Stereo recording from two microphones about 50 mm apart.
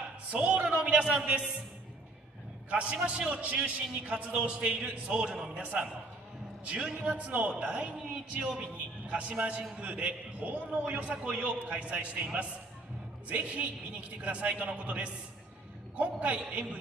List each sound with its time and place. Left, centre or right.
0.3 s a man's voice: right
2.7 s a man's voice: right
13.3 s a man's voice: right